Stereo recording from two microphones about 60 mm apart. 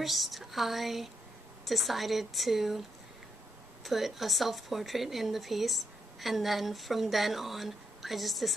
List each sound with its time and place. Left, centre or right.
0.0 s speech: centre
3.8 s speech: centre